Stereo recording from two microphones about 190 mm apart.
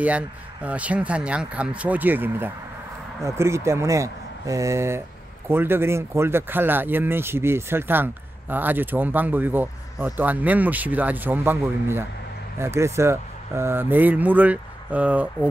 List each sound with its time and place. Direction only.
0.0 s speech: 5° right (ahead or behind)